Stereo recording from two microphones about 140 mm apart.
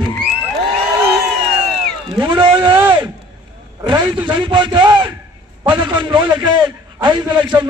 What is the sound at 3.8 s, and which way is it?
A man's voice, 35° right (ahead or behind).